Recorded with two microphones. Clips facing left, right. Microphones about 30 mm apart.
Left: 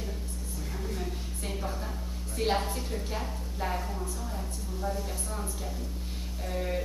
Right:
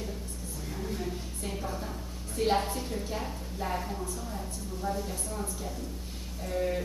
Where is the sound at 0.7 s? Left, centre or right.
Centre.